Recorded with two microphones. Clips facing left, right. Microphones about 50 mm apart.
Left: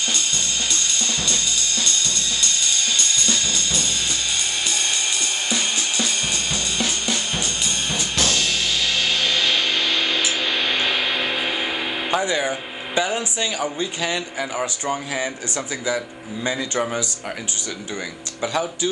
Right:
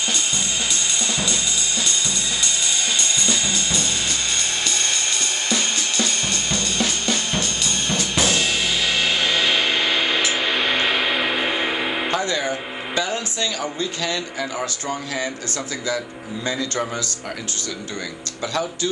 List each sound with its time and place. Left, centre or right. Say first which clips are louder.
5.5 s drum kit: right 1 dB; centre
8.2 s drum kit: right 1 dB; centre
9.0 s music: right 1 dB; centre
12.1 s speech: left 1 dB; centre
18.4 s speech: left 1 dB; centre